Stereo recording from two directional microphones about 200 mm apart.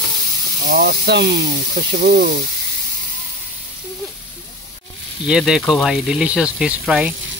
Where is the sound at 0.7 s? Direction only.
45° right (ahead or behind).